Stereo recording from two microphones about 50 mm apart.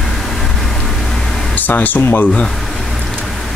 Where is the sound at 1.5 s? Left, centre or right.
Left.